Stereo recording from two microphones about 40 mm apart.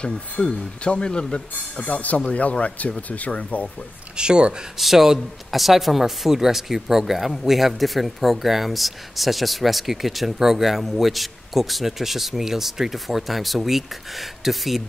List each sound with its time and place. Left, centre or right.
0.0 s speech: left
1.5 s speech: left
4.2 s speech: right
4.7 s a man's voice: centre